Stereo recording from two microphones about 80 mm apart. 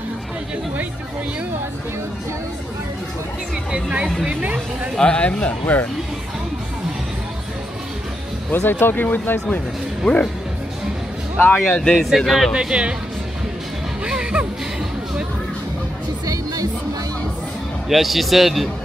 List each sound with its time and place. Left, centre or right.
3.7 s speech: centre
4.9 s speech: centre
8.5 s speech: left
10.0 s speech: centre
11.3 s speech: left
12.0 s a man's voice: centre
12.5 s speech: centre
14.0 s music: centre
17.8 s a man's voice: centre